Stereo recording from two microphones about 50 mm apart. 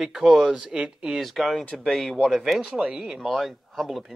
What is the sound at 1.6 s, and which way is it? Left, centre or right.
Speech, centre.